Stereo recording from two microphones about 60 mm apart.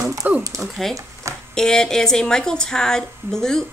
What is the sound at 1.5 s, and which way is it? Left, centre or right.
A woman's voice, centre.